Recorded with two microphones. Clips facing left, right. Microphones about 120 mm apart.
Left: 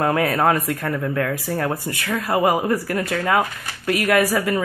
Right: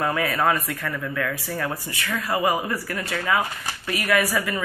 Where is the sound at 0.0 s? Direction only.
45° left (ahead or behind).